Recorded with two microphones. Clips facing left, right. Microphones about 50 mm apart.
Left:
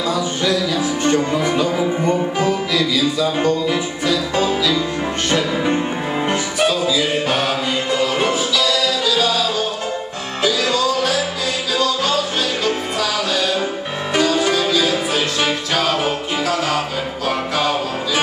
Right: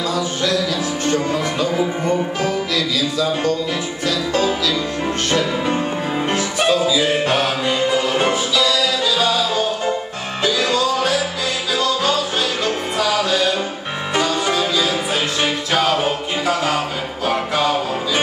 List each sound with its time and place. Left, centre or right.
0.1 s music: centre
0.7 s music: left
3.2 s speech: centre
5.3 s music: centre
6.6 s music: centre
8.3 s music: right
10.4 s music: centre
12.6 s music: centre
14.4 s music: right